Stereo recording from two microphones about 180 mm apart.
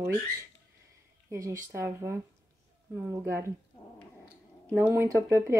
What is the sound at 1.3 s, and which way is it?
Speech, 15° right (ahead or behind).